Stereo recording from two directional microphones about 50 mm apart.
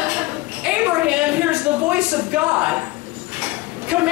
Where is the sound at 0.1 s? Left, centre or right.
Right.